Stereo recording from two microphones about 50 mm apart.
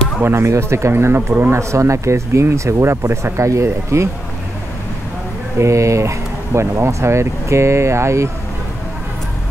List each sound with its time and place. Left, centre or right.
0.2 s speech: right
1.5 s speech: right
2.5 s speech: right
5.6 s speech: right